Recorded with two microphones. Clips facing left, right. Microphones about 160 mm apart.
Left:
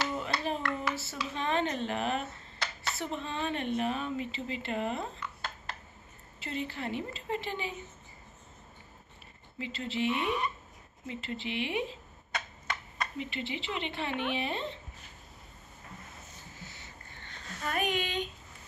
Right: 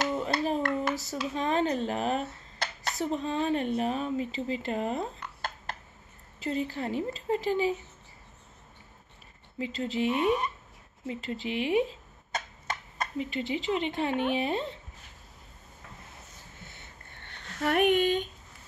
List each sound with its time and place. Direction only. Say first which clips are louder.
0.0 s clapping: right 5 dB; 40° right (ahead or behind)
1.1 s speech: right 3 dB; 40° right (ahead or behind)
9.6 s speech: right 4 dB; 40° right (ahead or behind)
16.5 s a sound: left 1 dB; 55° right (ahead or behind)